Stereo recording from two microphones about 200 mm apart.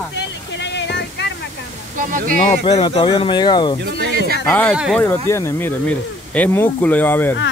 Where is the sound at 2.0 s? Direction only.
40° right (ahead or behind).